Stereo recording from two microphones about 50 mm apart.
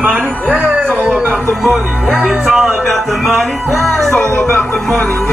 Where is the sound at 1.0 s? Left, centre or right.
Right.